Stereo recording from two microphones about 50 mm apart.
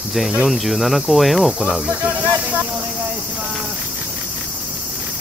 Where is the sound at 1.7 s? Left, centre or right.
Right.